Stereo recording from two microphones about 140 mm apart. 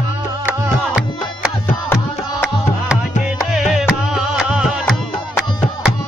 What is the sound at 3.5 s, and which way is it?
Music, 5° right (ahead or behind).